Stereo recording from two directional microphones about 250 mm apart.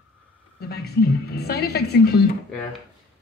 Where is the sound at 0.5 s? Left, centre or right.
Left.